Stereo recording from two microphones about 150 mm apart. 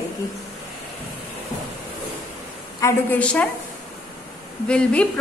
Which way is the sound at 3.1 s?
10° left (ahead or behind).